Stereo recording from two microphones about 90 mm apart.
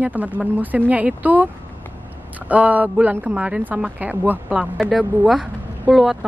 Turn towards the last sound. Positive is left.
turn(degrees=-5)  # may be behind; listen again after turning